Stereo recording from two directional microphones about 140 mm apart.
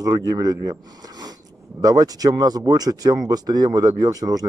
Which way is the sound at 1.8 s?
25° right (ahead or behind).